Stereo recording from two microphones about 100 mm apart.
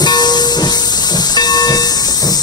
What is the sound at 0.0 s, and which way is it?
Train, 45° left (ahead or behind).